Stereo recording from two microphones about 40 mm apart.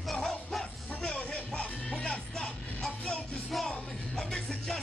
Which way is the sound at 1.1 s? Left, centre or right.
Left.